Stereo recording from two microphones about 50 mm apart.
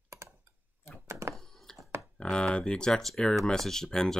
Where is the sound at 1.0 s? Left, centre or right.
Right.